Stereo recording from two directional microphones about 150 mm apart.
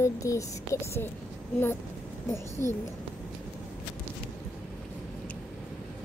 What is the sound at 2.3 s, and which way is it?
Speech, 20° left (ahead or behind).